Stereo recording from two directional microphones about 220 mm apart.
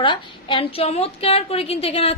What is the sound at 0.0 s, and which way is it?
A woman's voice, 20° left (ahead or behind).